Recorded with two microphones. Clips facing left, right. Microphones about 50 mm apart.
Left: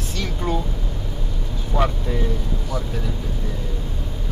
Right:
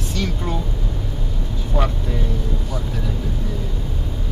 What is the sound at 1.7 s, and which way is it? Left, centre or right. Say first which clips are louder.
Vehicle: left 1 dB; centre.